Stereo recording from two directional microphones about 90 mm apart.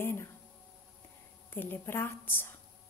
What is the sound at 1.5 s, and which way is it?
A woman's voice, 20° left (ahead or behind).